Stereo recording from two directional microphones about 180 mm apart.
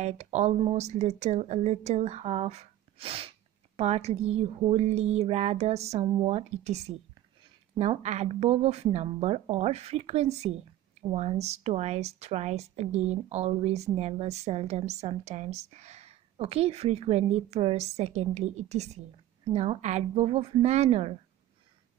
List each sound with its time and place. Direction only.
0.0 s speech: 40° right (ahead or behind)